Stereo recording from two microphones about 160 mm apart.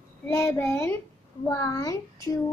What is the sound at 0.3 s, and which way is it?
A child's voice, 15° left (ahead or behind).